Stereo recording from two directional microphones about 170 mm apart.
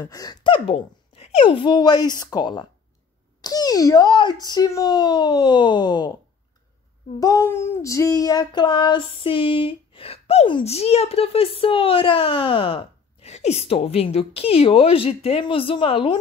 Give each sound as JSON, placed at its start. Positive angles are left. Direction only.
{"t": 0.0, "sound": "speech", "side_deg": 20}
{"t": 7.2, "sound": "child singing", "side_deg": 20}